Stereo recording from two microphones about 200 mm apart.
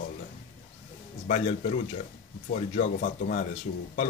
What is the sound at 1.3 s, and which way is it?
Speech, 35° left (ahead or behind).